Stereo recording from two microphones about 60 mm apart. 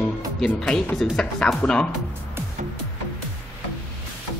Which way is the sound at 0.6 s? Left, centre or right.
Centre.